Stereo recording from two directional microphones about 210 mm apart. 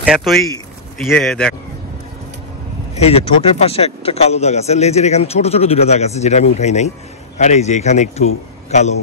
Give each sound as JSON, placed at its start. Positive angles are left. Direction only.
{"t": 0.0, "sound": "a man's voice", "side_deg": 0}
{"t": 3.0, "sound": "speech", "side_deg": 30}